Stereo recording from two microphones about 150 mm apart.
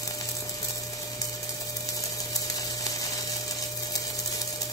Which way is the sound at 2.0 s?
25° left (ahead or behind).